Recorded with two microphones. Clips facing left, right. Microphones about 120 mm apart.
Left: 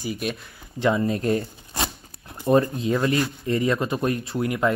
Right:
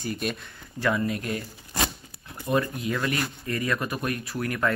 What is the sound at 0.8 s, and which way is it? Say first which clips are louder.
Speech: left 4 dB; 25° left (ahead or behind).